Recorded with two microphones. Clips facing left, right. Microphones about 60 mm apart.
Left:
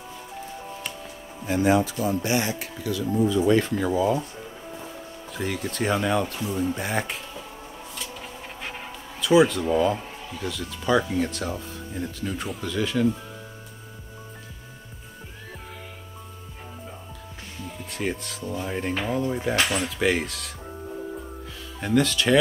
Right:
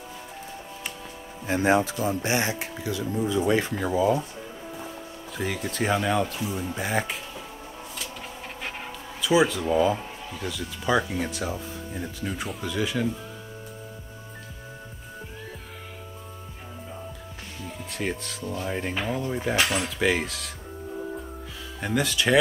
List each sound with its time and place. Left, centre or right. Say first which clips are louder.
1.5 s speech: left 1 dB; right; by 4.2 s centre
5.3 s speech: left 1 dB; centre
9.2 s speech: left 3 dB; centre
17.8 s speech: left 1 dB; centre
21.7 s speech: left 4 dB; centre